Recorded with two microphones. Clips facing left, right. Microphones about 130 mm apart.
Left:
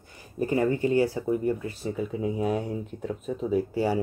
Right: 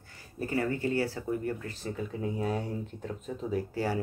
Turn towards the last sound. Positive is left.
turn(degrees=15)  # may be behind; listen again after turning